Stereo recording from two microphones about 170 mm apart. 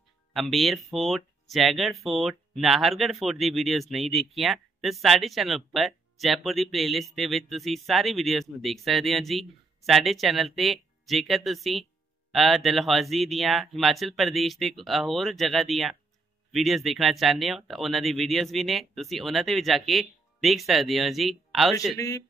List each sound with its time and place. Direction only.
0.3 s speech: centre (ahead or behind)
21.9 s speech: 20° left (ahead or behind)